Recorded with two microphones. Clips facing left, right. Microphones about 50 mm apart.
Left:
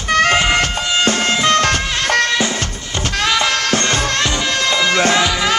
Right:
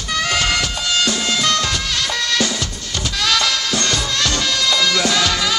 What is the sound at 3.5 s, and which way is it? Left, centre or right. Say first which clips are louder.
Music: left 4 dB; left.